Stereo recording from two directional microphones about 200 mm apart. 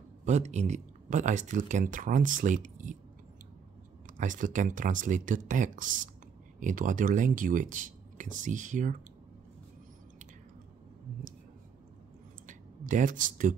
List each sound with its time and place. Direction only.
0.2 s speech: 35° right (ahead or behind)
4.2 s speech: 40° right (ahead or behind)
12.4 s speech: 40° right (ahead or behind)